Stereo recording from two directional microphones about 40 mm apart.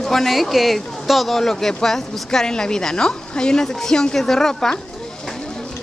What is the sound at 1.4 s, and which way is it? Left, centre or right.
A woman's voice, centre.